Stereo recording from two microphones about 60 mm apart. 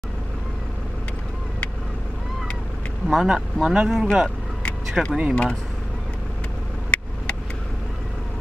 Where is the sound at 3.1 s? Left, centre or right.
Centre.